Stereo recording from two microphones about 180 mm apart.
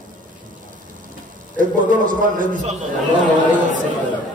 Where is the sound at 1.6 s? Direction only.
50° right (ahead or behind).